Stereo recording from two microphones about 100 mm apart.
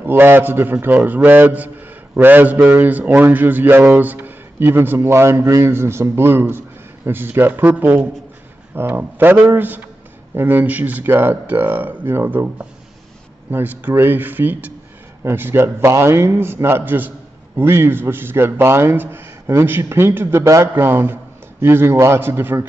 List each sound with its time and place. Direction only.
0.0 s a man's voice: 20° right (ahead or behind)
13.5 s a man's voice: 20° right (ahead or behind)